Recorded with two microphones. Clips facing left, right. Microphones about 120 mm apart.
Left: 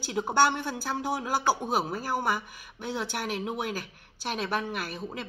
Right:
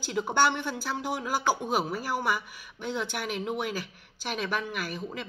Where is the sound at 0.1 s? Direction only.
40° left (ahead or behind).